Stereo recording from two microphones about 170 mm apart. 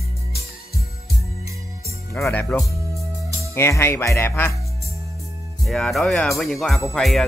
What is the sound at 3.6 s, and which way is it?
Speech, 15° left (ahead or behind).